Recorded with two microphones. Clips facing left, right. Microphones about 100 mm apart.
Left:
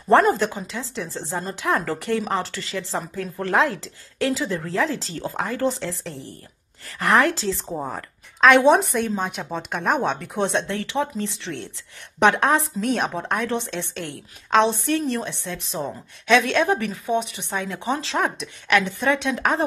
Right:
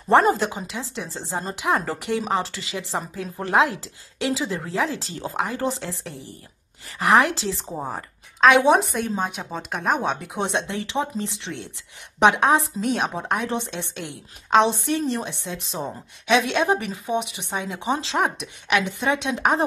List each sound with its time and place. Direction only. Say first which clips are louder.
0.1 s a woman's voice: left 1 dB; 15° right (ahead or behind)
8.4 s a woman's voice: left 1 dB; 5° right (ahead or behind)